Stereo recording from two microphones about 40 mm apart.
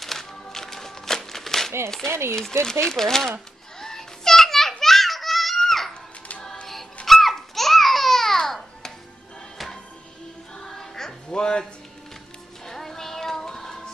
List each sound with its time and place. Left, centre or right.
0.0 s music: centre
2.3 s speech: centre
3.8 s children playing: centre
5.7 s music: centre
7.1 s babbling: centre
10.6 s music: centre
11.2 s speech: left
12.6 s music: centre